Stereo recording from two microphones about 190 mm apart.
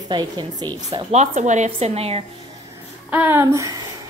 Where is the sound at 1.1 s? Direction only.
35° right (ahead or behind).